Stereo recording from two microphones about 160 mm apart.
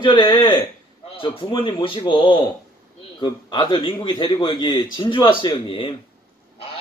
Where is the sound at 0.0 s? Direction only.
30° left (ahead or behind).